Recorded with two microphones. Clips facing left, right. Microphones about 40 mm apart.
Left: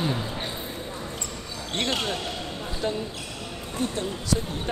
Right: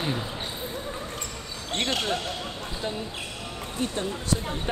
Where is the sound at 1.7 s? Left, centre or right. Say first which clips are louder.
Even; centre.